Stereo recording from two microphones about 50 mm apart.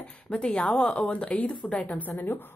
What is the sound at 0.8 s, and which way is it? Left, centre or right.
Speech, left.